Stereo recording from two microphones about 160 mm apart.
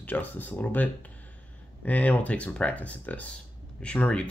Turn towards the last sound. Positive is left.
turn(degrees=5)  # may be behind; listen again after turning